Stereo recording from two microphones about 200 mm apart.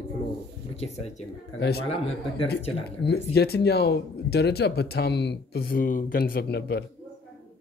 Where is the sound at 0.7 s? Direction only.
30° left (ahead or behind).